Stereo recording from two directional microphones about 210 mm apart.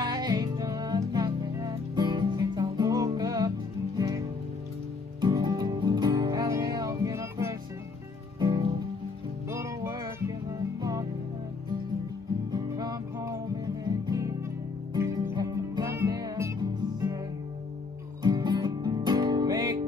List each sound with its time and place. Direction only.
0.0 s music: 20° right (ahead or behind)
5.2 s music: 20° right (ahead or behind)
12.4 s music: 20° right (ahead or behind)
18.2 s music: 20° right (ahead or behind)